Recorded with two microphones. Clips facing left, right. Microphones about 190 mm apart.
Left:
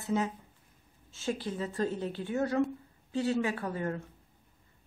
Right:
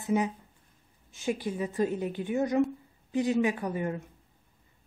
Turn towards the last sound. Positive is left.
turn(degrees=-15)  # may be behind; listen again after turning